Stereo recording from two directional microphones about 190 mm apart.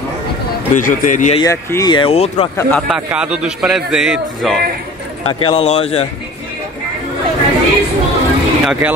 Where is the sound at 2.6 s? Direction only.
5° left (ahead or behind).